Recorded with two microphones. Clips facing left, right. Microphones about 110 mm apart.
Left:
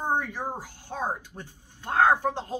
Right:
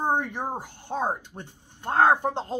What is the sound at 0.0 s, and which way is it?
Speech, 20° right (ahead or behind).